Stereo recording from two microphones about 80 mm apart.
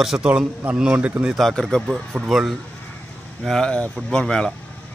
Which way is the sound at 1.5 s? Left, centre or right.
Centre.